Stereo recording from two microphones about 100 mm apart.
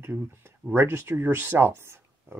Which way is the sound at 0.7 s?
25° right (ahead or behind).